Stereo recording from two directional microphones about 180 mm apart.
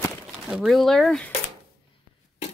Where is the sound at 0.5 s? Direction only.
Centre (ahead or behind).